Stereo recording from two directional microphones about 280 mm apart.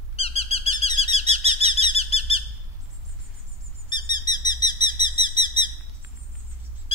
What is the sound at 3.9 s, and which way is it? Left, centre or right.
Bird, centre.